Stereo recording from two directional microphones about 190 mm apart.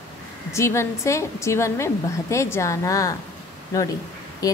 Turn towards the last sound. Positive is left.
turn(degrees=20)  # may be behind; listen again after turning